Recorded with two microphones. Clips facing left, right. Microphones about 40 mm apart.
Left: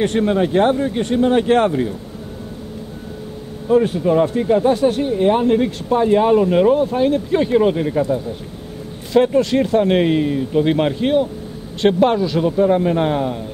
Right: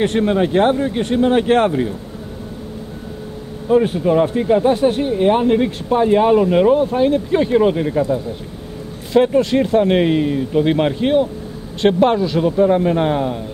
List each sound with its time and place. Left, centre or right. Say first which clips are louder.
0.0 s speech: right 1 dB; right
3.7 s speech: even; right; by 13.4 s centre